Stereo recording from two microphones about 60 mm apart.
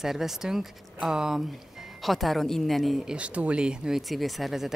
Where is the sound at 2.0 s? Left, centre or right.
Centre.